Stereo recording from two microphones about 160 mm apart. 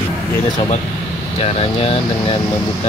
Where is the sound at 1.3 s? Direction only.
40° left (ahead or behind).